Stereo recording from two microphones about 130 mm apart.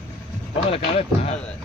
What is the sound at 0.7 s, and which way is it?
Speech, 45° left (ahead or behind).